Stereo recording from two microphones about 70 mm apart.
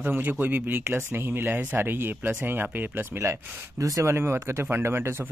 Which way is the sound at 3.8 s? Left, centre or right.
Right.